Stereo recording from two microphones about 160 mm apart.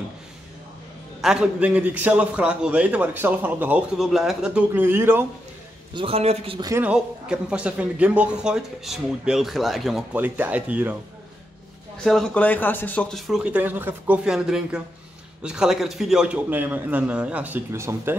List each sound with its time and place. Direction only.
1.2 s a man's voice: 5° right (ahead or behind)
5.9 s a man's voice: 40° right (ahead or behind)
6.8 s speech: 5° right (ahead or behind)
10.1 s a man's voice: 10° right (ahead or behind)
12.0 s speech: centre (ahead or behind)
13.3 s a man's voice: 5° right (ahead or behind)